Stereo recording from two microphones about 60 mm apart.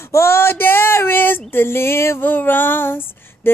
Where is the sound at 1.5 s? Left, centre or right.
Left.